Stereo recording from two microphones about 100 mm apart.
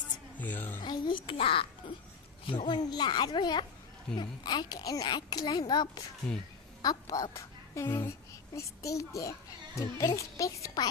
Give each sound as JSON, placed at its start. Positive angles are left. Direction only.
{"t": 0.4, "sound": "a woman's voice", "side_deg": 20}
{"t": 0.8, "sound": "a child's voice", "side_deg": 50}
{"t": 2.4, "sound": "a child's voice", "side_deg": 55}